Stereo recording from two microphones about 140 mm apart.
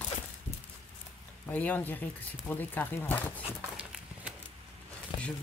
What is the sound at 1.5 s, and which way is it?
Speech, 10° left (ahead or behind).